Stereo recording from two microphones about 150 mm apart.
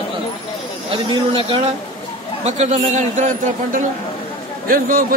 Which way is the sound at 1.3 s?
35° right (ahead or behind).